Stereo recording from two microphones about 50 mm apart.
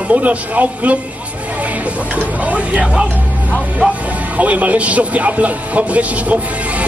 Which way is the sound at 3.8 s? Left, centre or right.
Right.